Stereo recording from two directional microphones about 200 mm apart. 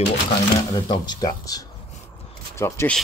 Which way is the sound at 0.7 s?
20° left (ahead or behind).